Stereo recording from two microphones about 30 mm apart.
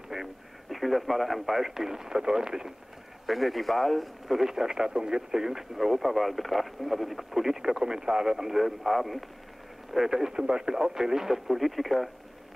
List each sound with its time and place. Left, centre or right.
0.1 s speech: centre
3.3 s speech: centre
4.3 s speech: centre
5.9 s speech: centre
9.9 s speech: centre
10.3 s speech: right; by 12.1 s centre